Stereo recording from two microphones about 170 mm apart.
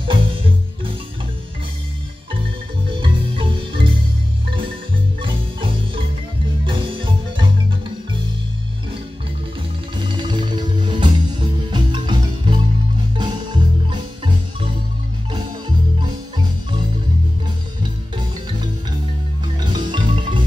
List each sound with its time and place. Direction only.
0.1 s music: 30° right (ahead or behind)
3.0 s marimba: 30° right (ahead or behind)
5.2 s marimba: 30° right (ahead or behind)
6.6 s music: 30° right (ahead or behind)
9.9 s music: 25° right (ahead or behind)
13.2 s marimba: 25° right (ahead or behind)
16.0 s marimba: 25° right (ahead or behind)
19.6 s marimba: 25° right (ahead or behind)